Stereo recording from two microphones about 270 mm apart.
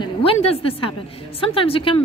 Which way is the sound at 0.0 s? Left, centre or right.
Left.